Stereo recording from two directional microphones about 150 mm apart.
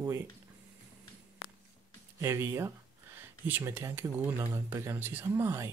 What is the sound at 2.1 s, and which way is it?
Speech, 20° right (ahead or behind).